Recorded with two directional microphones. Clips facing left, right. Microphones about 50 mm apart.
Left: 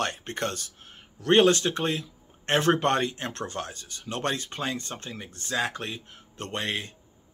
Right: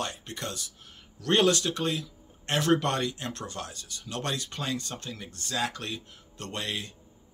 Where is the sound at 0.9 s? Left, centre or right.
Left.